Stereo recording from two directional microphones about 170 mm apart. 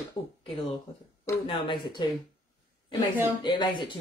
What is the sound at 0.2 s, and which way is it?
Speech, 30° left (ahead or behind).